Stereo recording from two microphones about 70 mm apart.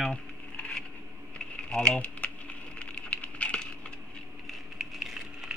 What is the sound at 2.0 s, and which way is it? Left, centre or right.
Typing, left.